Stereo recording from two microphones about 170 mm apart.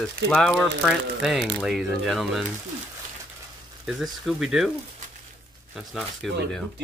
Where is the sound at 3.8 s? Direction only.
Centre (ahead or behind).